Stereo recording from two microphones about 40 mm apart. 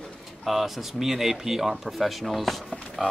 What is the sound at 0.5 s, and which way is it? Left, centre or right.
Speech, centre.